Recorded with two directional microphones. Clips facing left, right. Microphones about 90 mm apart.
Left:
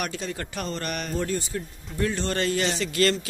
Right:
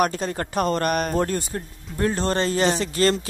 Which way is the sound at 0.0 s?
40° right (ahead or behind).